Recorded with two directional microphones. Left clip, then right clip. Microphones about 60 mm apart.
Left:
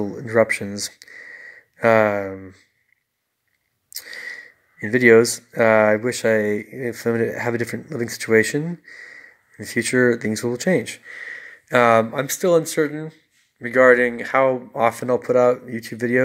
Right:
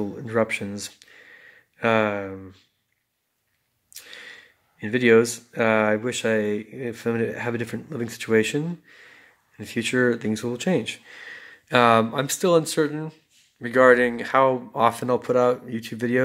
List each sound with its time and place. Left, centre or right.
0.0 s speech: left
3.9 s speech: left
11.1 s a sound: centre
11.7 s speech: centre